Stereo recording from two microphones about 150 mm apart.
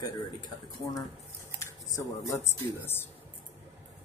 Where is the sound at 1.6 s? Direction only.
20° left (ahead or behind).